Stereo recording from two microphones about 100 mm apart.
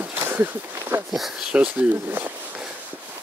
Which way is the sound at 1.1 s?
5° right (ahead or behind).